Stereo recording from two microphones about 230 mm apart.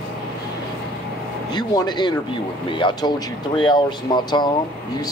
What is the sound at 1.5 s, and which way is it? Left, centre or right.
Speech, centre.